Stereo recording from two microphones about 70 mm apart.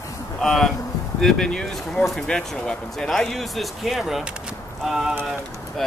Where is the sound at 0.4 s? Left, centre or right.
Centre.